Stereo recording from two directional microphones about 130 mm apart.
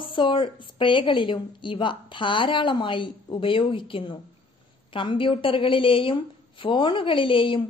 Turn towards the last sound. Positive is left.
turn(degrees=40)  # may be behind; listen again after turning